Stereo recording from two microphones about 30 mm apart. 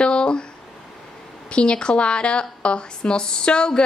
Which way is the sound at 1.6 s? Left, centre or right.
Left.